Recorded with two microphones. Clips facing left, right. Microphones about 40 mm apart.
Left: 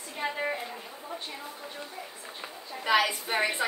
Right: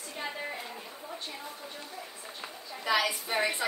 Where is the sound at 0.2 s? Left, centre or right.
Left.